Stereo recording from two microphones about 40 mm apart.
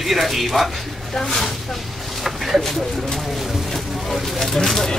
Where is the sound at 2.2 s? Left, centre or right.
Centre.